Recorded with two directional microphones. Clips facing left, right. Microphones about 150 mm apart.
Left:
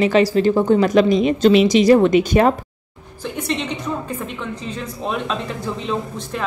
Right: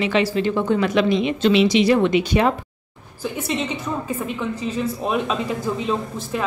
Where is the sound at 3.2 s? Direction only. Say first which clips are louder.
Even; 5° right (ahead or behind).